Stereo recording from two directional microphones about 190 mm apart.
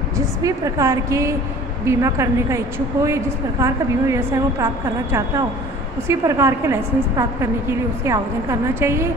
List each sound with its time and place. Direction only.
0.2 s a woman's voice: 15° right (ahead or behind)
6.0 s a woman's voice: 15° right (ahead or behind)